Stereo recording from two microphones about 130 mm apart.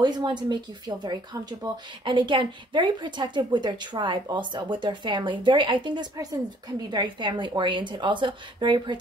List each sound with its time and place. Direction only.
0.0 s speech: 35° right (ahead or behind)